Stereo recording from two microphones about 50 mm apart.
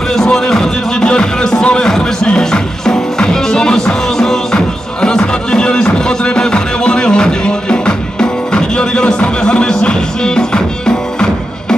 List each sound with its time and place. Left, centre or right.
0.1 s music: centre